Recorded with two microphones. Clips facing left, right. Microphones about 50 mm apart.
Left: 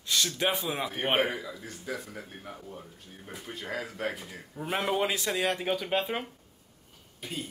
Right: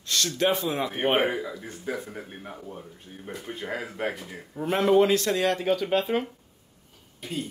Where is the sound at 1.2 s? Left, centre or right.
Right.